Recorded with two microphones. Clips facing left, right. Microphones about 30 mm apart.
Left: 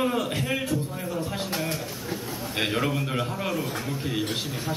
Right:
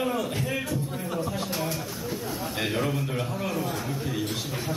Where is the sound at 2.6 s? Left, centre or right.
Left.